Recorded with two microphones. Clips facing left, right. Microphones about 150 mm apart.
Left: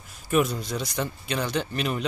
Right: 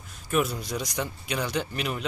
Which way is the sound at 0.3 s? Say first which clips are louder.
Left 3 dB; 5° right (ahead or behind).